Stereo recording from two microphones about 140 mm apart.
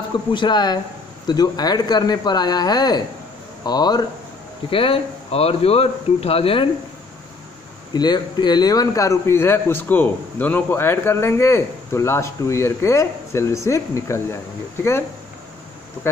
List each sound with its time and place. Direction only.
0.3 s a man's voice: 35° left (ahead or behind)
4.6 s speech: 40° left (ahead or behind)
7.9 s a man's voice: 30° left (ahead or behind)